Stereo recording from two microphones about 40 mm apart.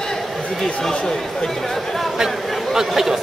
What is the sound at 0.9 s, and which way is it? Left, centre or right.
Chatter, centre.